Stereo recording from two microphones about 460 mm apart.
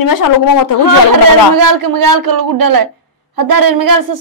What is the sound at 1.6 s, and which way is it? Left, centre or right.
Speech, right.